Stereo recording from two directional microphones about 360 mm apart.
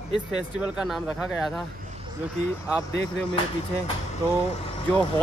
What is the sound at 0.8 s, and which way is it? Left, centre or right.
Speech, centre.